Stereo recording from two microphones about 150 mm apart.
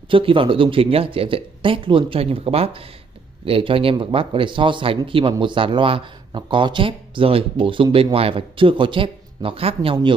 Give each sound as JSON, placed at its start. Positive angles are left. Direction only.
{"t": 0.1, "sound": "speech", "side_deg": -35}